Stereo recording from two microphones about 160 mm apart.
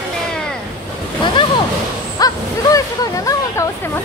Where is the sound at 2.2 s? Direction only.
20° left (ahead or behind).